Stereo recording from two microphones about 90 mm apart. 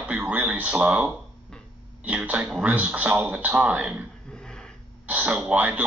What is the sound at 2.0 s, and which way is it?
Speech, 15° right (ahead or behind).